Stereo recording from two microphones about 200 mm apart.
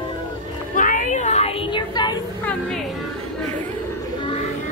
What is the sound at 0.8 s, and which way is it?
Child singing, 40° left (ahead or behind).